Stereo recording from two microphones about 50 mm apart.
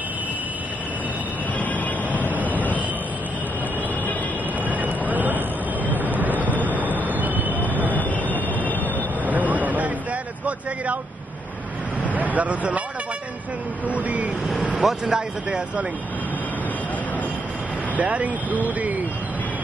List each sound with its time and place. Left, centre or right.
2.1 s vehicle: right
4.6 s vehicle: right
5.9 s a sound: right
6.5 s vehicle: right
7.9 s train: left
9.2 s a sound: right
12.4 s speech: right
13.9 s vehicle: right
14.8 s speech: centre
17.9 s speech: right